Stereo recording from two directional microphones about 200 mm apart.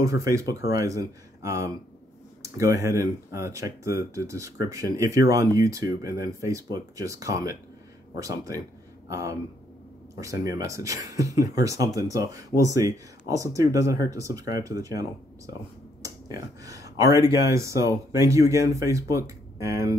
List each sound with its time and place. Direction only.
0.0 s speech: 15° right (ahead or behind)
10.4 s speech: 15° right (ahead or behind)